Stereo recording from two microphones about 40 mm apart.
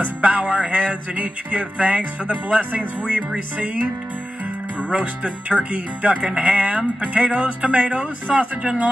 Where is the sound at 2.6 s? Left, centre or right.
Right.